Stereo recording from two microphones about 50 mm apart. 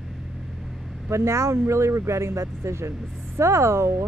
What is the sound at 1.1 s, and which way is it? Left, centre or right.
Speech, right.